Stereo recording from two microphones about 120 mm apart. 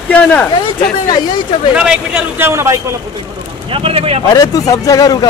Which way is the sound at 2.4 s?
25° right (ahead or behind).